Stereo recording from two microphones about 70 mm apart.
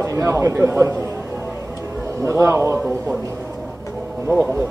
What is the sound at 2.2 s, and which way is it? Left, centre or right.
Speech, right.